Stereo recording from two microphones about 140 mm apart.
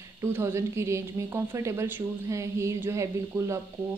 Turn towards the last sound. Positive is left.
turn(degrees=-20)  # may be behind; listen again after turning